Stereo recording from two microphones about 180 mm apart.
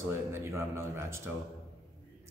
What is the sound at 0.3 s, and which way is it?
Speech, 15° right (ahead or behind).